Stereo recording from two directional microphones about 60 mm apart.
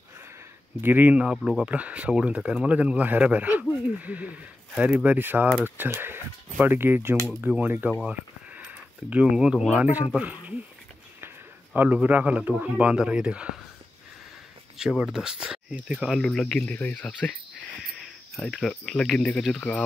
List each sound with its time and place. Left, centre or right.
0.7 s speech: right
1.1 s speech: centre; by 7.9 s right
9.1 s speech: centre
11.1 s speech: right; by 13.5 s centre
14.8 s speech: centre
15.9 s speech: centre
16.6 s speech: left
18.6 s speech: centre